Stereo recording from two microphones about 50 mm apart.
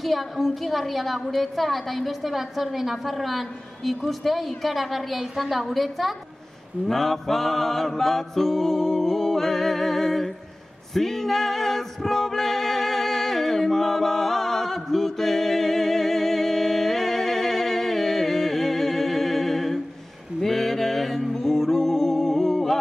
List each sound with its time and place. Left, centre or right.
0.0 s a woman's voice: centre
6.9 s mantra: centre
11.0 s music: centre